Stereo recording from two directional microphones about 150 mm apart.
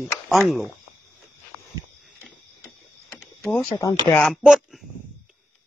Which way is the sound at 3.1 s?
5° left (ahead or behind).